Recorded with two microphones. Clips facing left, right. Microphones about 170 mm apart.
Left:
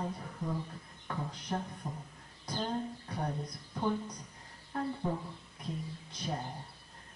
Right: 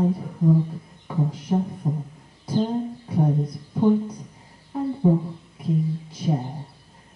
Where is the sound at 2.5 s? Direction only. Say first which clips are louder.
Right 12 dB; 10° right (ahead or behind).